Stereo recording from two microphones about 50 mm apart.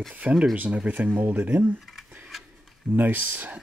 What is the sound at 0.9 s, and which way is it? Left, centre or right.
Speech, right.